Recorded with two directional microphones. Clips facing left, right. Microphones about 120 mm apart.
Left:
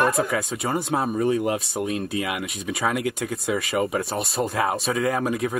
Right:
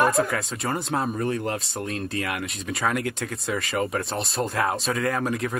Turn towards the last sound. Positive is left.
turn(degrees=5)  # may be behind; listen again after turning